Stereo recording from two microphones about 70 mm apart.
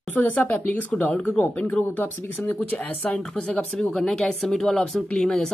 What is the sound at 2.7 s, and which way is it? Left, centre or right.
Speech, centre.